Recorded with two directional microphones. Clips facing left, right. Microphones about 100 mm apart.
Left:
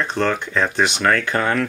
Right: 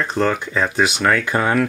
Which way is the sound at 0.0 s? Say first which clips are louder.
Right 1 dB; 5° right (ahead or behind).